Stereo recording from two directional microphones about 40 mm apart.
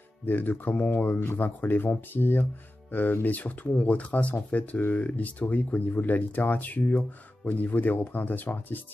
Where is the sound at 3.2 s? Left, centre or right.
Left.